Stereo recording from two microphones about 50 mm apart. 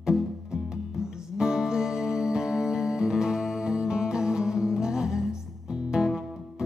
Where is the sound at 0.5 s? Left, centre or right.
Centre.